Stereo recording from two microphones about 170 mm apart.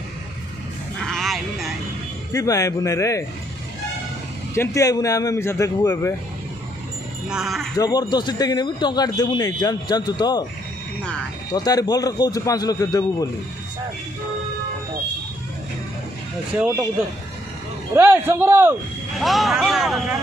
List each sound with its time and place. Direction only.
1.0 s a sound: centre (ahead or behind)
2.3 s a man's voice: 20° left (ahead or behind)
4.6 s a man's voice: 20° left (ahead or behind)
7.2 s speech: centre (ahead or behind)
7.7 s a man's voice: 20° left (ahead or behind)
11.5 s a man's voice: 25° left (ahead or behind)
16.5 s a man's voice: 10° right (ahead or behind)
17.9 s a man's voice: 15° right (ahead or behind)
19.1 s speech: centre (ahead or behind)